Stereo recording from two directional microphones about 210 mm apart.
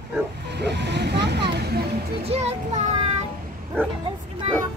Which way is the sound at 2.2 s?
30° right (ahead or behind).